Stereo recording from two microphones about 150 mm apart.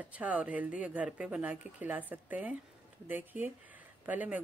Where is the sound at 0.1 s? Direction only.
10° right (ahead or behind).